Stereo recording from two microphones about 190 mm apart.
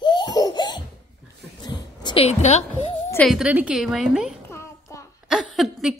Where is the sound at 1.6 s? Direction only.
25° left (ahead or behind).